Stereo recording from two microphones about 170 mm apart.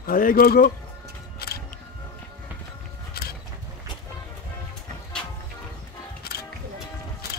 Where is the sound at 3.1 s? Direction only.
65° left (ahead or behind).